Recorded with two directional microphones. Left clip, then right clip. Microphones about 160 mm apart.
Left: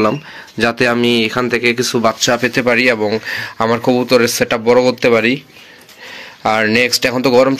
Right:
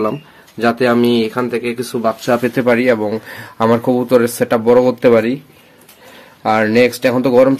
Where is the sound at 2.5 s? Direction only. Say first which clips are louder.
Even; 10° right (ahead or behind).